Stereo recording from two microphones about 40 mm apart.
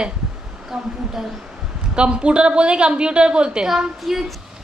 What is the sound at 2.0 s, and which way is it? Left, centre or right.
A woman's voice, right.